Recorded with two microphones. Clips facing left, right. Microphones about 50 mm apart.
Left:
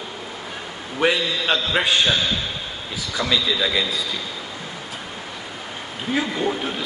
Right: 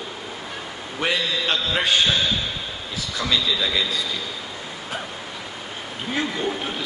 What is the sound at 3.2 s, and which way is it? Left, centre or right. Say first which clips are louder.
Speech: left 2 dB; centre.